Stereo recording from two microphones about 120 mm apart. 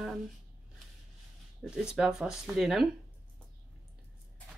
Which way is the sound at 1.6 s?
5° right (ahead or behind).